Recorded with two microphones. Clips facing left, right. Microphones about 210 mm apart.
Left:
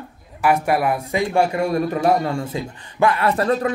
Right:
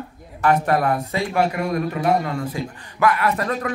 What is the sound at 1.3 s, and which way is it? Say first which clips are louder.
A man's voice: left 2 dB; 30° left (ahead or behind).